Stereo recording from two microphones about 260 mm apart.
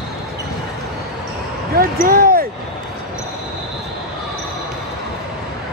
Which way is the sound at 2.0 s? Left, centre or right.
Right.